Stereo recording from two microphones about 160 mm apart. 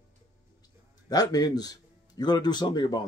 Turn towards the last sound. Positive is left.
turn(degrees=25)  # may be behind; listen again after turning